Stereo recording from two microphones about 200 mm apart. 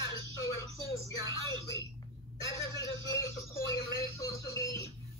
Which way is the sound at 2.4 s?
15° left (ahead or behind).